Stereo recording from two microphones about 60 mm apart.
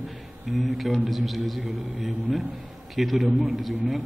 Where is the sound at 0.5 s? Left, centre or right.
Centre.